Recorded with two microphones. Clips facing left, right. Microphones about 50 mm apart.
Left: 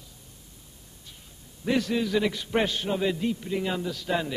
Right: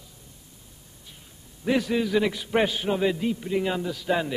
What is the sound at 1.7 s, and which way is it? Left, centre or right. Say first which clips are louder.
A man's voice: right 2 dB; centre.